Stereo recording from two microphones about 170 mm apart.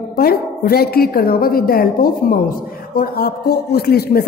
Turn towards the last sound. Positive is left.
turn(degrees=65)  # may be behind; listen again after turning